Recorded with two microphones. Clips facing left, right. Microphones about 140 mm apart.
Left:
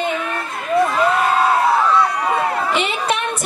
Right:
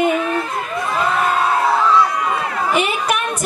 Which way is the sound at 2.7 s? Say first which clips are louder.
Right 1 dB; 25° left (ahead or behind).